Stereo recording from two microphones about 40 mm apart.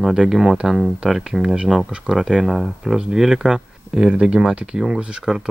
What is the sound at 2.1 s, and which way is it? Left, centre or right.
Speech, right.